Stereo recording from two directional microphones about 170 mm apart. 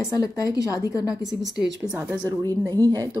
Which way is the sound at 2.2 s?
20° right (ahead or behind).